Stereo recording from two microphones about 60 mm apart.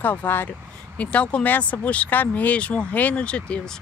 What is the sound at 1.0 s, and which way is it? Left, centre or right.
A woman's voice, left.